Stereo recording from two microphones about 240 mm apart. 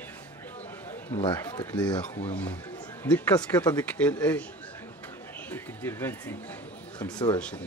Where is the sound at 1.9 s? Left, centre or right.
Left.